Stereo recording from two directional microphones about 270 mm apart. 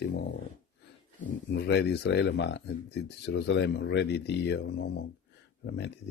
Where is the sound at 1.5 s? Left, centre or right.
Left.